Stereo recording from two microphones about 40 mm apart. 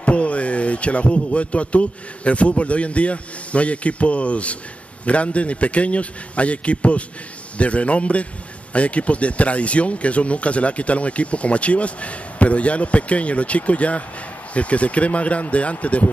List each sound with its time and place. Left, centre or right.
0.0 s speech: left